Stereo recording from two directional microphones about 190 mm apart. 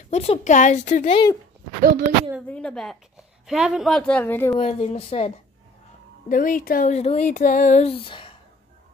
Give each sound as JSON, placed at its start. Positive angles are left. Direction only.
{"t": 0.1, "sound": "speech", "side_deg": 35}
{"t": 1.8, "sound": "speech", "side_deg": -45}
{"t": 2.4, "sound": "speech", "side_deg": 5}
{"t": 4.6, "sound": "speech", "side_deg": 35}
{"t": 6.2, "sound": "speech", "side_deg": 45}